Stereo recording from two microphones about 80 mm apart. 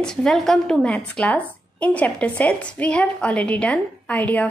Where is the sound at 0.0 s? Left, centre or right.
Centre.